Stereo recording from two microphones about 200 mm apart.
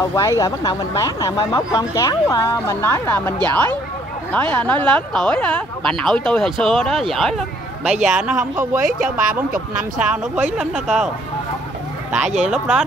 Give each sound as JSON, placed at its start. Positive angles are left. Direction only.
{"t": 0.1, "sound": "speech", "side_deg": 15}
{"t": 12.4, "sound": "speech", "side_deg": -5}